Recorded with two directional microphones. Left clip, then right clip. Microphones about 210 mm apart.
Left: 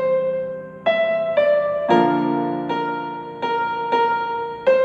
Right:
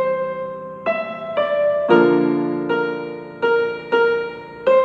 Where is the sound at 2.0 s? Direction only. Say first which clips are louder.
Right 3 dB; 15° right (ahead or behind).